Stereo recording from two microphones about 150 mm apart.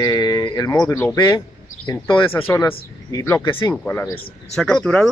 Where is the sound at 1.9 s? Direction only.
30° left (ahead or behind).